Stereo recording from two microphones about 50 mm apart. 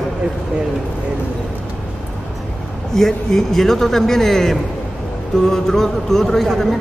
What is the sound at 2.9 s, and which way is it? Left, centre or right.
A man's voice, centre.